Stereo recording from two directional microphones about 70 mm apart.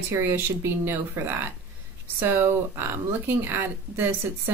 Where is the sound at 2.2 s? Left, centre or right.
Right.